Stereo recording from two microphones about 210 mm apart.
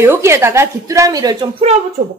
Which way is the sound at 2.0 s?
35° right (ahead or behind).